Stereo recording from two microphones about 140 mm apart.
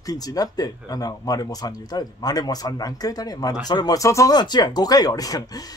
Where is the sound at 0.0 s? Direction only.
25° left (ahead or behind).